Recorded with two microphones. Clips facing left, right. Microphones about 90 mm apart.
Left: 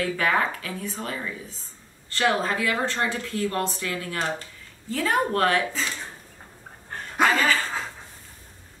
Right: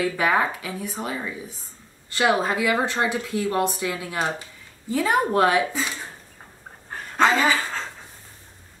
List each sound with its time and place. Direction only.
0.0 s speech: 15° right (ahead or behind)
7.2 s speech: 15° right (ahead or behind)